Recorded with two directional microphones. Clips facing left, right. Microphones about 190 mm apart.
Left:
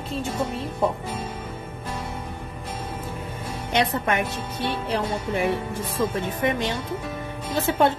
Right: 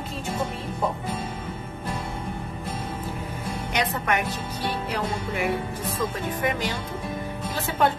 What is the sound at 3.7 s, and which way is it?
Speech, 25° left (ahead or behind).